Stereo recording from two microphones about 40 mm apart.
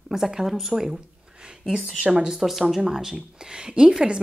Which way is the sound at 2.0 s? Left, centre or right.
Centre.